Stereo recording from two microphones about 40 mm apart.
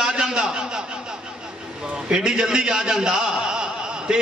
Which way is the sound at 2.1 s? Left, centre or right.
Centre.